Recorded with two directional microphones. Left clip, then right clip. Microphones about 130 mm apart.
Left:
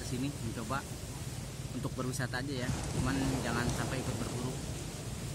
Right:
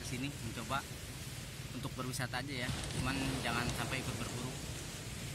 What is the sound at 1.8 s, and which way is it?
Speech, 20° right (ahead or behind).